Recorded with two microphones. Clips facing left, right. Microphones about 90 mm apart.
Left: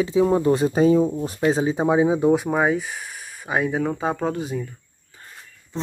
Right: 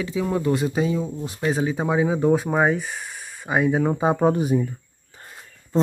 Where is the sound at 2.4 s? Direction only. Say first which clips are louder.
Even; centre (ahead or behind).